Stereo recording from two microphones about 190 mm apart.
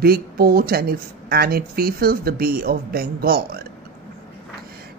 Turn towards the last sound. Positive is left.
turn(degrees=-50)  # may be behind; listen again after turning